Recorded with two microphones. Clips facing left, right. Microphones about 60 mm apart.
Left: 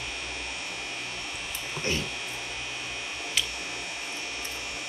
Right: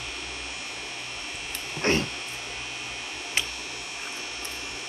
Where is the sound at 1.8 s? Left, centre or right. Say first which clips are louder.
Right 7 dB; right.